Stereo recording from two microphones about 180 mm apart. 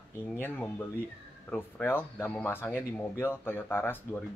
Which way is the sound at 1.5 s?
10° left (ahead or behind).